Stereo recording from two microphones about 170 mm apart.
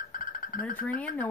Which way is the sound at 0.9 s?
55° left (ahead or behind).